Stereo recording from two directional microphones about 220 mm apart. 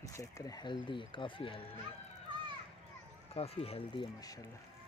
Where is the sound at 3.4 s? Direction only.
25° left (ahead or behind).